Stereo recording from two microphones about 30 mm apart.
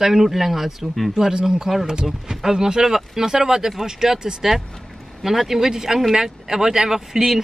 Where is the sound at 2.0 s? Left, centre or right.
Centre.